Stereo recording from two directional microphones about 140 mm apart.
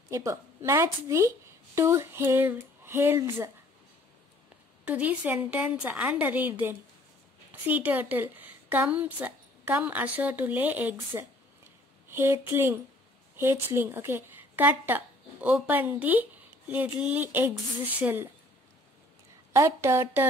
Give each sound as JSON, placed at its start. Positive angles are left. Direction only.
{"t": 0.1, "sound": "a woman's voice", "side_deg": -20}
{"t": 4.8, "sound": "a woman's voice", "side_deg": -10}
{"t": 19.5, "sound": "a woman's voice", "side_deg": -20}